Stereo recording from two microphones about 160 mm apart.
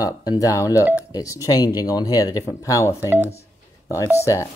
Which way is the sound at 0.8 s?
10° right (ahead or behind).